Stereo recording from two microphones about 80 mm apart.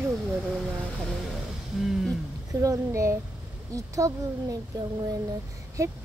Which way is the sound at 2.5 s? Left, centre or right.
Right.